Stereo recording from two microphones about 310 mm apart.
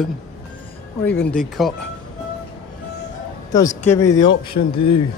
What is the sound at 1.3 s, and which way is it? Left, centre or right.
Speech, centre.